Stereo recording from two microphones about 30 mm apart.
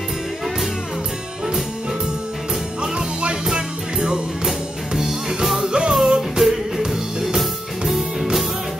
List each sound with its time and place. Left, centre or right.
2.8 s music: right
4.5 s music: centre
5.7 s music: right
7.2 s music: centre